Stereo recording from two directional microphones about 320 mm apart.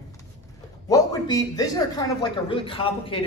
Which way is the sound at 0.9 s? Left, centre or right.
Centre.